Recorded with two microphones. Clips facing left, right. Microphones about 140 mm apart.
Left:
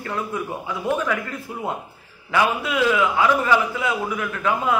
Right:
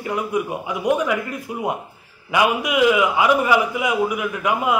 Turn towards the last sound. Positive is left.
turn(degrees=-15)  # may be behind; listen again after turning